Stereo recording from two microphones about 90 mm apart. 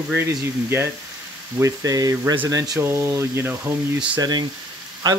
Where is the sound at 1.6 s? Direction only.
40° right (ahead or behind).